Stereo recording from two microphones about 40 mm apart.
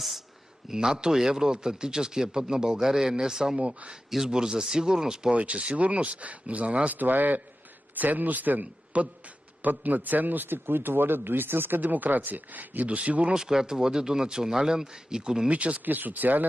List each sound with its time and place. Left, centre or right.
0.7 s speech: centre
5.3 s speech: right
7.0 s a man's voice: right
11.8 s speech: right
13.4 s speech: centre
15.5 s speech: right
15.8 s speech: right